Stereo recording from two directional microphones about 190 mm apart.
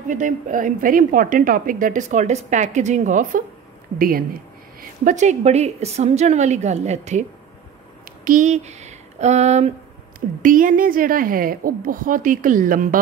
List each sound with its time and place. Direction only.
0.1 s a woman's voice: 40° right (ahead or behind)